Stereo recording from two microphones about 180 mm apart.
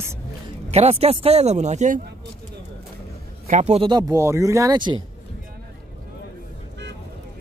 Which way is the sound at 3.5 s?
40° right (ahead or behind).